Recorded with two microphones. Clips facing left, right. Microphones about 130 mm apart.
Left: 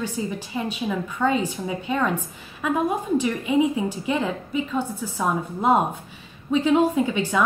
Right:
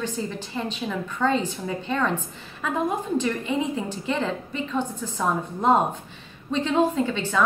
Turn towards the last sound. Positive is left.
turn(degrees=10)  # may be behind; listen again after turning